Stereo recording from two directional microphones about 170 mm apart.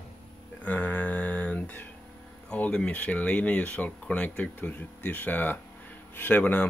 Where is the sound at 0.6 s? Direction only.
10° left (ahead or behind).